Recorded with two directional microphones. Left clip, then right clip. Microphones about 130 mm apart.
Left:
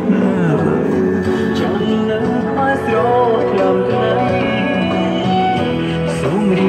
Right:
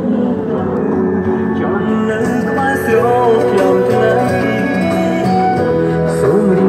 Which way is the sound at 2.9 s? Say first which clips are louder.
Right 4 dB; 30° right (ahead or behind).